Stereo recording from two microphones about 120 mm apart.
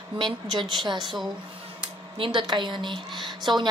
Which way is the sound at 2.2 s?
40° right (ahead or behind).